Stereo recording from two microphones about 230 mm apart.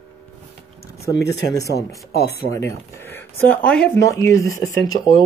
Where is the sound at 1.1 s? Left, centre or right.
Left.